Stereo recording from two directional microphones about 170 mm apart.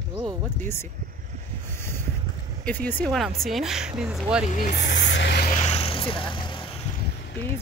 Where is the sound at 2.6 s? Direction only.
10° left (ahead or behind).